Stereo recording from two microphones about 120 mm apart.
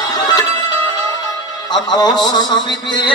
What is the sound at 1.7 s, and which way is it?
Music, 35° left (ahead or behind).